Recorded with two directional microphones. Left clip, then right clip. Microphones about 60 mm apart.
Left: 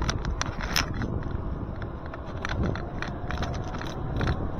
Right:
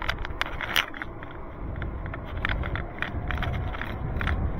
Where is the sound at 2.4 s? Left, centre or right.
Left.